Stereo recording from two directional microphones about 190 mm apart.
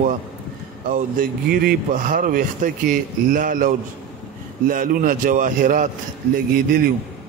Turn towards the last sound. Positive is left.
turn(degrees=-50)  # may be behind; listen again after turning